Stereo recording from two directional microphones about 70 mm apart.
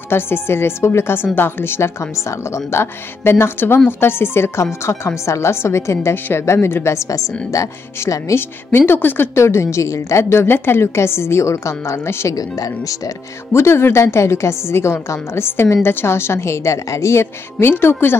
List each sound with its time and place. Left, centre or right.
0.1 s a woman's voice: left
8.7 s a woman's voice: left
12.4 s speech: left
13.5 s a woman's voice: left